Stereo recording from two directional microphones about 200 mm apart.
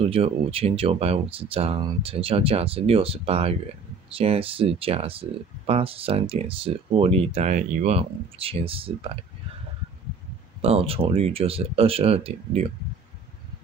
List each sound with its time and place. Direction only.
0.0 s speech: 30° right (ahead or behind)
10.6 s speech: 30° right (ahead or behind)